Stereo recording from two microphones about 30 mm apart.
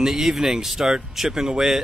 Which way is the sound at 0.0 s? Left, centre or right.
Centre.